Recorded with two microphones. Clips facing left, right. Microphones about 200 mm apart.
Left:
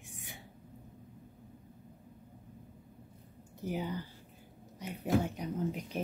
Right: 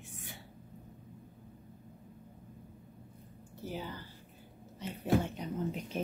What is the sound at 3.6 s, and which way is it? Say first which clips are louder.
Speech: left 5 dB; 15° left (ahead or behind).